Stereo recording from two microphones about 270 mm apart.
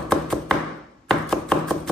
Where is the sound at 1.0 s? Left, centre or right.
Centre.